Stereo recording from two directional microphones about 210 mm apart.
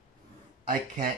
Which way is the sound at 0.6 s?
40° right (ahead or behind).